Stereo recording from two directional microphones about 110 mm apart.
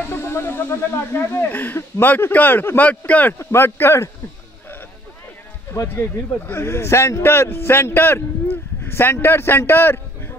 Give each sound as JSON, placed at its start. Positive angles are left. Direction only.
{"t": 0.1, "sound": "speech", "side_deg": 20}
{"t": 5.7, "sound": "speech", "side_deg": 25}